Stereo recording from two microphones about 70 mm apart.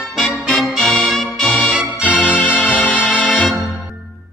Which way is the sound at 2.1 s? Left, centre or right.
Left.